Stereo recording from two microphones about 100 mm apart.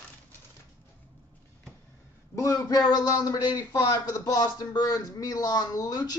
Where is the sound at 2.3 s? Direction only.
35° left (ahead or behind).